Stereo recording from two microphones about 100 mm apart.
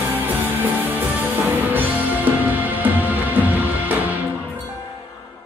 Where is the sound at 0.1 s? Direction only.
20° right (ahead or behind).